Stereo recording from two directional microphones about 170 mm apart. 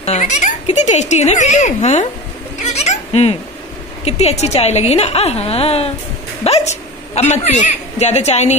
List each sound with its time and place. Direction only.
0.0 s speech: 40° left (ahead or behind)
2.6 s a sound: 40° left (ahead or behind)
4.0 s a woman's voice: 40° left (ahead or behind)